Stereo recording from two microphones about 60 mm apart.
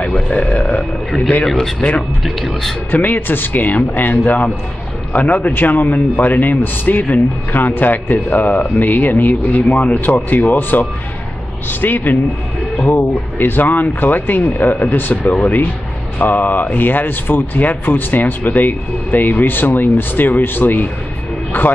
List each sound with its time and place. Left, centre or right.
0.0 s a man's voice: left
1.4 s speech: centre
2.9 s a man's voice: left